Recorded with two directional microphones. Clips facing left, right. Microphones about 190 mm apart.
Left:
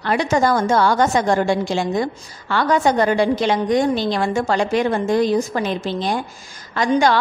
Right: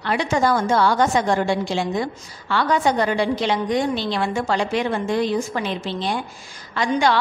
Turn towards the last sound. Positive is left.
turn(degrees=45)  # may be behind; listen again after turning